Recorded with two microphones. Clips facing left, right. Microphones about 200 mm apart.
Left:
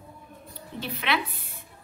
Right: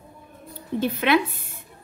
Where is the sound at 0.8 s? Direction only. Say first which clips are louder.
Right 9 dB; 50° right (ahead or behind).